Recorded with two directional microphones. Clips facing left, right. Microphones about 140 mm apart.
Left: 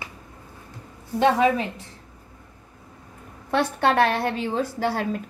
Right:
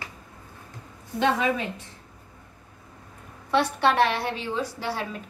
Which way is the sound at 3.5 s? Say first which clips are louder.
Left 1 dB; 50° left (ahead or behind).